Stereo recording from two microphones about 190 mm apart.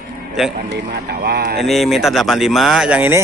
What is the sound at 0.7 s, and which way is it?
Speech, 55° right (ahead or behind).